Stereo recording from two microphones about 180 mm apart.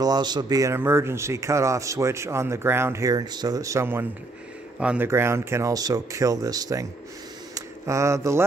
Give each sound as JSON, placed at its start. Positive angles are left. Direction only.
{"t": 0.0, "sound": "a man's voice", "side_deg": -25}